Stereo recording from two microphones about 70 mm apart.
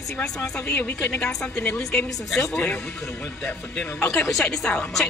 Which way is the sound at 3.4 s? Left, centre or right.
Centre.